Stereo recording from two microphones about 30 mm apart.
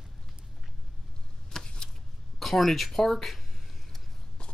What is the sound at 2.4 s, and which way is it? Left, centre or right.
Speech, centre.